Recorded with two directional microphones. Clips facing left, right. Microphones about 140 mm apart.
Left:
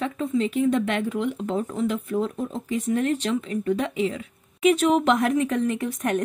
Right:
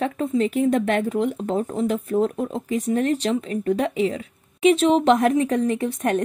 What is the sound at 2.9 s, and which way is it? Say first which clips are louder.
Speech: right 2 dB; 35° right (ahead or behind).